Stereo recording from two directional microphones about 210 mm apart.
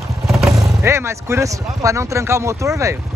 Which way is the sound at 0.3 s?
Centre (ahead or behind).